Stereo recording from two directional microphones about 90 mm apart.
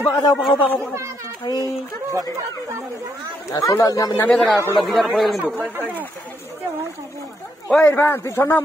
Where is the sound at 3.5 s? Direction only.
35° left (ahead or behind).